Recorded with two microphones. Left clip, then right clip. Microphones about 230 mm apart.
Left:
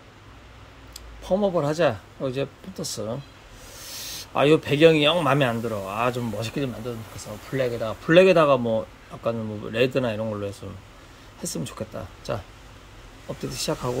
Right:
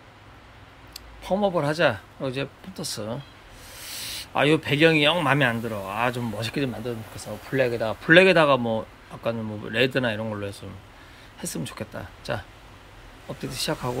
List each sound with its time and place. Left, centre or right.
0.9 s a man's voice: centre
11.8 s a man's voice: centre
13.3 s a man's voice: centre